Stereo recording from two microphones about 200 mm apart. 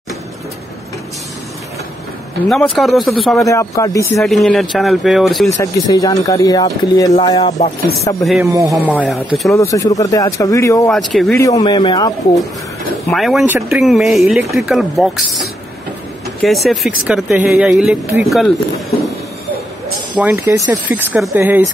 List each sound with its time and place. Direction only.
2.5 s speech: centre (ahead or behind)
3.3 s speech: 15° left (ahead or behind)
4.2 s speech: centre (ahead or behind)
5.6 s speech: 15° left (ahead or behind)
7.4 s chopping: 35° left (ahead or behind)
8.6 s speech: 5° left (ahead or behind)
9.5 s speech: 15° left (ahead or behind)
10.9 s speech: centre (ahead or behind)
11.3 s speech: 15° left (ahead or behind)
13.1 s speech: centre (ahead or behind)
20.2 s speech: 15° right (ahead or behind)